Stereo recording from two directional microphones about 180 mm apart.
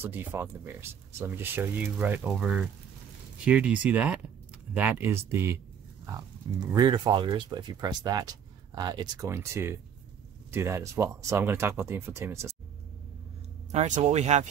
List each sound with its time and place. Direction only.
0.0 s speech: 10° right (ahead or behind)
13.7 s speech: 40° right (ahead or behind)